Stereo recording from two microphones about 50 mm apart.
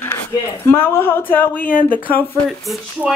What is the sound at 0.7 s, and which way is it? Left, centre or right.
Speech, left.